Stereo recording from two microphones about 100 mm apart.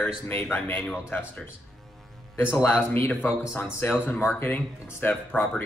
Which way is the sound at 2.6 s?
20° left (ahead or behind).